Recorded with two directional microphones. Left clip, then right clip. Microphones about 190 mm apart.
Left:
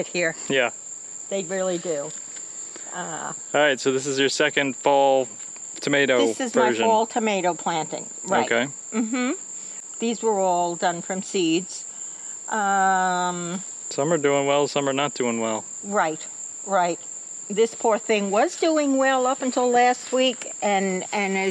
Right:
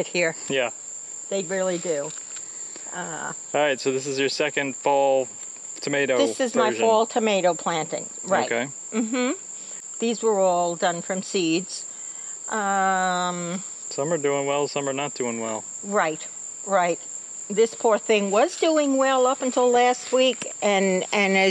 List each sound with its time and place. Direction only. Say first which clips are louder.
0.0 s speech: right 1 dB; 15° right (ahead or behind)
0.4 s speech: left 3 dB; 35° left (ahead or behind)
1.3 s speech: even; 15° right (ahead or behind)
3.5 s speech: left 2 dB; 25° left (ahead or behind)
6.1 s speech: left 1 dB; 15° right (ahead or behind)
8.5 s speech: left 3 dB; 30° left (ahead or behind)
8.9 s speech: right 2 dB; 10° right (ahead or behind)
13.8 s speech: left 3 dB; 40° left (ahead or behind)
15.9 s speech: even; 15° right (ahead or behind)
20.6 s speech: right 2 dB; 35° right (ahead or behind)